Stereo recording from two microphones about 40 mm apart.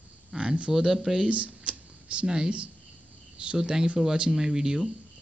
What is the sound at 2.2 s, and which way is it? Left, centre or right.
Speech, right.